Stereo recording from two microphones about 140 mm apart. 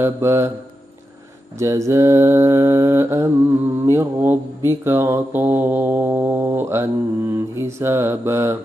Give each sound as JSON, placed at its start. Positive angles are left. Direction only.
{"t": 0.0, "sound": "speech", "side_deg": -20}
{"t": 1.6, "sound": "mantra", "side_deg": -20}
{"t": 3.8, "sound": "speech", "side_deg": -20}